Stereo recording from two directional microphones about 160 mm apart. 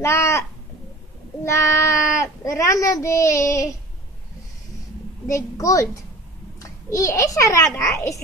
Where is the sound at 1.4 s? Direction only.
15° left (ahead or behind).